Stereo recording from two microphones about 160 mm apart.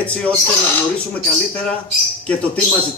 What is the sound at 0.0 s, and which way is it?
Speech, 10° left (ahead or behind).